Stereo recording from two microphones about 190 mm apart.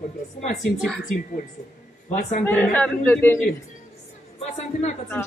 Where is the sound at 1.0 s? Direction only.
45° left (ahead or behind).